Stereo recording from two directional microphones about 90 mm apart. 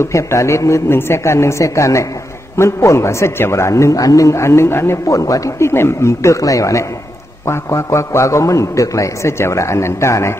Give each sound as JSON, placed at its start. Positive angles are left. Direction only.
{"t": 0.0, "sound": "a man's voice", "side_deg": 35}